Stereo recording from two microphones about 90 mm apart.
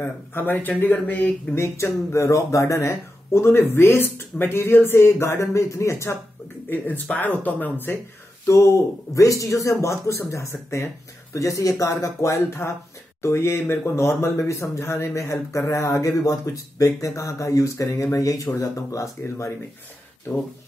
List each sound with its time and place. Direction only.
0.0 s speech: 25° left (ahead or behind)
1.6 s speech: 30° left (ahead or behind)
6.7 s speech: 20° left (ahead or behind)
8.5 s speech: 30° left (ahead or behind)